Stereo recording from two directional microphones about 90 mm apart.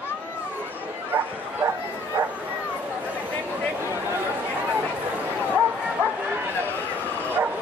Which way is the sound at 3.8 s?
30° right (ahead or behind).